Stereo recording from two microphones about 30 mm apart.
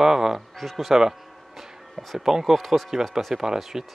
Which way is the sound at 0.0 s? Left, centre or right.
Centre.